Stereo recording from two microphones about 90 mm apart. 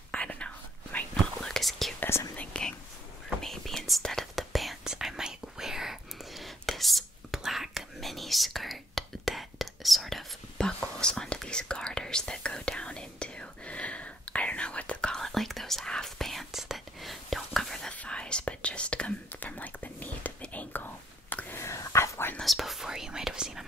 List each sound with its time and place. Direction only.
0.1 s whispering: 15° left (ahead or behind)
2.0 s whispering: 30° left (ahead or behind)
2.3 s whispering: 15° left (ahead or behind); by 22.3 s 30° left (ahead or behind)
22.4 s whispering: centre (ahead or behind)